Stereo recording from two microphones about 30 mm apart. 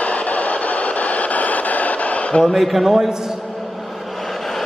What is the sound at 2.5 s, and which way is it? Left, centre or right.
Speech, centre.